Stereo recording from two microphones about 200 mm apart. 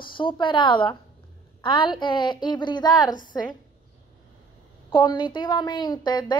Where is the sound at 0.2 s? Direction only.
25° left (ahead or behind).